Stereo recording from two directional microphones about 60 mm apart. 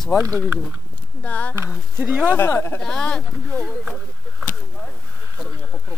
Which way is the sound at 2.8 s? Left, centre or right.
Centre.